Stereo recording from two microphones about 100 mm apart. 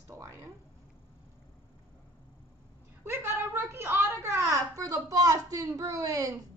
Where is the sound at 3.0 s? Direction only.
25° right (ahead or behind).